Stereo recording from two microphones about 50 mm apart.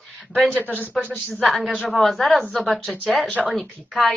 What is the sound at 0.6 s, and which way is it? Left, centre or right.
Speech, left.